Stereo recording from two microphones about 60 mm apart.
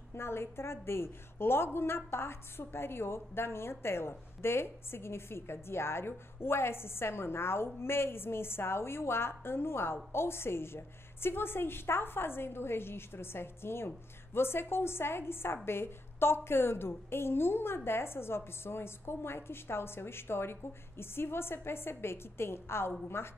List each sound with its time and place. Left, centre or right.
0.1 s a woman's voice: left